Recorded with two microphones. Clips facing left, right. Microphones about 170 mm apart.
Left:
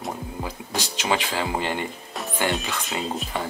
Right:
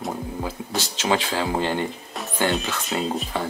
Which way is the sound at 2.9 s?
Centre (ahead or behind).